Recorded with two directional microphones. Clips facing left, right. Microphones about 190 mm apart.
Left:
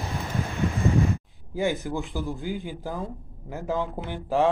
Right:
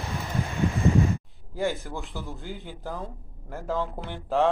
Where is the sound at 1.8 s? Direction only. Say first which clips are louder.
Left 6 dB; centre (ahead or behind).